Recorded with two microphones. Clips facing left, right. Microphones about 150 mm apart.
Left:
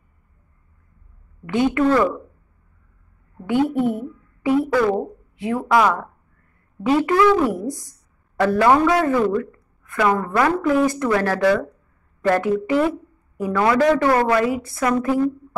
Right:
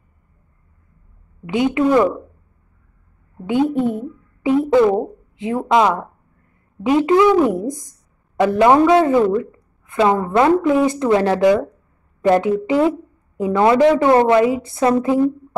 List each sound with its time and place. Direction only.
1.4 s a woman's voice: 15° right (ahead or behind)
3.7 s a woman's voice: 20° right (ahead or behind)